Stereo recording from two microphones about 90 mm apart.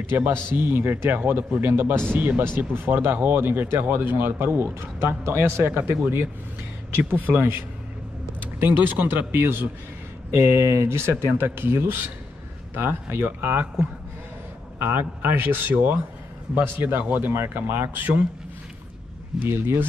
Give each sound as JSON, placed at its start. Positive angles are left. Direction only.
{"t": 0.1, "sound": "speech", "side_deg": -25}
{"t": 7.3, "sound": "speech", "side_deg": -30}
{"t": 14.8, "sound": "speech", "side_deg": -25}
{"t": 19.4, "sound": "speech", "side_deg": -25}